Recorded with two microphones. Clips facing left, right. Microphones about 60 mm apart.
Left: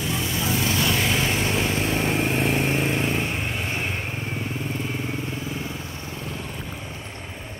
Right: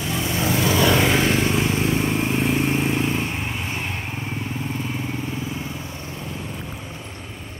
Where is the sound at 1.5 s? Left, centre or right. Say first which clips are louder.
Right 2 dB; centre.